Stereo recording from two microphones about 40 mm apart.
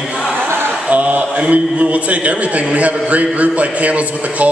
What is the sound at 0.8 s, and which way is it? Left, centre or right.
A man's voice, right.